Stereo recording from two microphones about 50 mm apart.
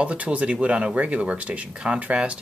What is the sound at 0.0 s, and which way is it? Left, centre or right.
Speech, right.